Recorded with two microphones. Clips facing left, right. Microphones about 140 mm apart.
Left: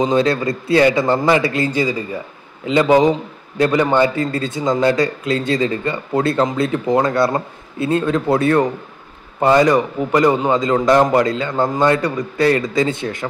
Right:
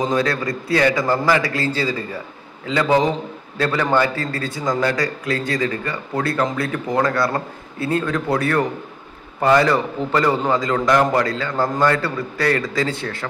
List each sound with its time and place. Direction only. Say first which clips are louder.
0.1 s a man's voice: left 4 dB; 25° left (ahead or behind)